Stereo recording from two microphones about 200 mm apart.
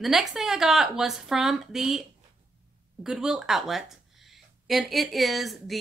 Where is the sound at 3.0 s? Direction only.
5° right (ahead or behind).